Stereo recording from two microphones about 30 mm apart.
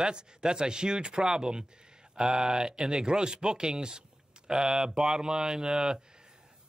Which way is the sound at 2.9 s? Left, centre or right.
Right.